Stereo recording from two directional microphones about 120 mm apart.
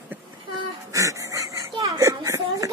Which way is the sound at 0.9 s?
25° right (ahead or behind).